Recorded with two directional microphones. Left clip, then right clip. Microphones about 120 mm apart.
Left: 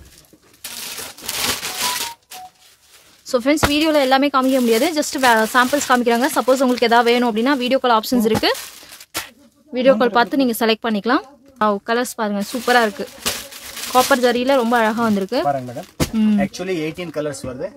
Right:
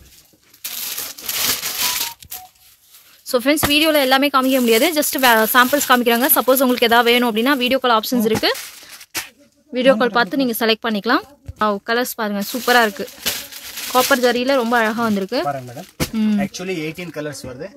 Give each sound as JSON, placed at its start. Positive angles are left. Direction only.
{"t": 3.3, "sound": "a woman's voice", "side_deg": -15}
{"t": 9.9, "sound": "speech", "side_deg": 0}
{"t": 15.4, "sound": "speech", "side_deg": 50}
{"t": 16.1, "sound": "speech", "side_deg": -5}
{"t": 16.3, "sound": "speech", "side_deg": 80}